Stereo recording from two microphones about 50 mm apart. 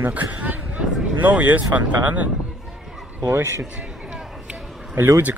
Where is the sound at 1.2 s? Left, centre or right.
Right.